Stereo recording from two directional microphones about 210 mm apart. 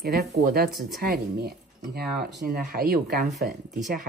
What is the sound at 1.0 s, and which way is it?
Speech, 45° right (ahead or behind).